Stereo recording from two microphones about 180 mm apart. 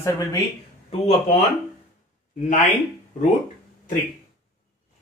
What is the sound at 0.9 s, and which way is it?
Speech, 40° left (ahead or behind).